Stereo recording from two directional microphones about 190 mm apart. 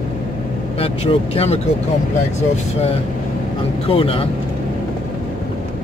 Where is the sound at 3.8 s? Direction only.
30° left (ahead or behind).